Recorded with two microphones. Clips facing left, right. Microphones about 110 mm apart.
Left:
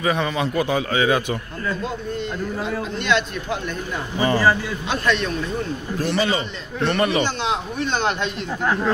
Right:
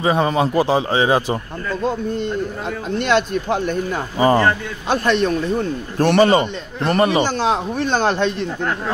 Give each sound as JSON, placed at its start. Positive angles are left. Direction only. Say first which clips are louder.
{"t": 0.0, "sound": "a man's voice", "louder": "right 5 dB", "side_deg": -30}
{"t": 3.0, "sound": "speech", "louder": "right 6 dB", "side_deg": -45}
{"t": 4.8, "sound": "speech", "louder": "right 6 dB", "side_deg": -40}
{"t": 5.9, "sound": "a man's voice", "louder": "right 9 dB", "side_deg": -60}